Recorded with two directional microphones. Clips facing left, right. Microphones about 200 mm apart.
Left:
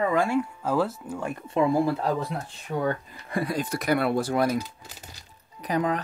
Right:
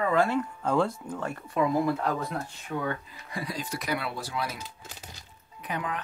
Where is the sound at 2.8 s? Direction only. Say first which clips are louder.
Left 5 dB; 55° left (ahead or behind).